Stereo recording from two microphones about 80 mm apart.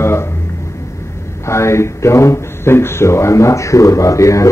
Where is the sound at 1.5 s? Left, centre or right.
Left.